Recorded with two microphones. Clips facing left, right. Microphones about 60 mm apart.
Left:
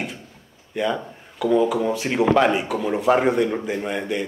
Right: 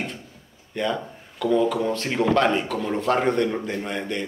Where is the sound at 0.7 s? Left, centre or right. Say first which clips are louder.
Left 2 dB; centre.